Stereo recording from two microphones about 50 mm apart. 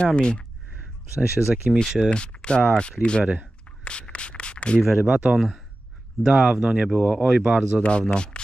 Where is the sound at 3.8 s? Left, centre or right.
Left.